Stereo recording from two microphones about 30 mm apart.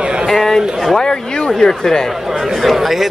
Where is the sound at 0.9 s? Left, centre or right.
Left.